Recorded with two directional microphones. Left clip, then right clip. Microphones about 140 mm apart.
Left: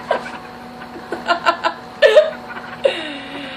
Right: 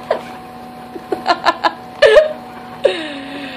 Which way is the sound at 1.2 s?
55° right (ahead or behind).